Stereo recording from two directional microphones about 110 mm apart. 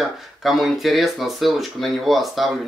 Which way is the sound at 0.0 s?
Centre (ahead or behind).